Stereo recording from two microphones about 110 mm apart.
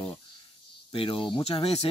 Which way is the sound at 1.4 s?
65° left (ahead or behind).